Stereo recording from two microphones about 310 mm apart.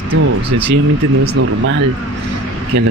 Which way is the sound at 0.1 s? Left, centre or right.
Right.